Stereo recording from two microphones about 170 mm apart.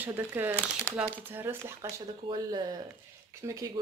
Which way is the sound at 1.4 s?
10° right (ahead or behind).